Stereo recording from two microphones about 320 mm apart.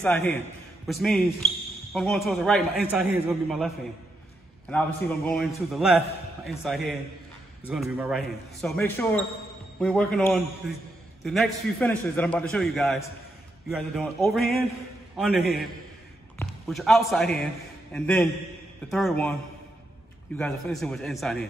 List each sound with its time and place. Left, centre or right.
0.0 s a man's voice: centre
20.3 s speech: centre